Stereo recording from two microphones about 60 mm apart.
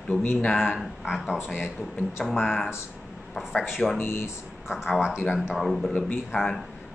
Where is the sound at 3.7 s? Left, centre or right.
Centre.